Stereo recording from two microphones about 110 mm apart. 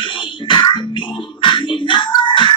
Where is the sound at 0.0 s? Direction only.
45° left (ahead or behind).